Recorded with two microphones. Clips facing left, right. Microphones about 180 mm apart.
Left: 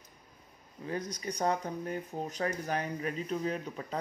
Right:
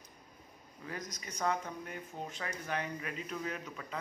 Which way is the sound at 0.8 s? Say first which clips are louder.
Left 8 dB; 30° left (ahead or behind).